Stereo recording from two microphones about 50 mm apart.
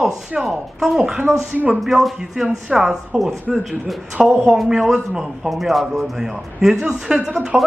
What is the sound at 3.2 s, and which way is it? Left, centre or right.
Speech, centre.